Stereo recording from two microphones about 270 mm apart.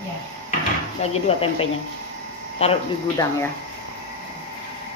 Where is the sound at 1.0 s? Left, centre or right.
Left.